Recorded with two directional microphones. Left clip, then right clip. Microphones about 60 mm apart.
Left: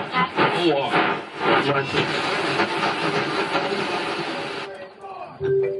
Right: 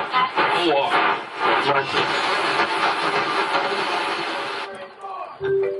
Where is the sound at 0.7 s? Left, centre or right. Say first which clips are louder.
Right 2 dB; centre.